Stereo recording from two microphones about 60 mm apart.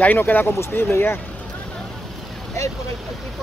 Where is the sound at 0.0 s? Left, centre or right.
Left.